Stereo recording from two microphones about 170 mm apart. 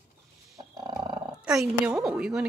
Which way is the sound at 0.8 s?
25° right (ahead or behind).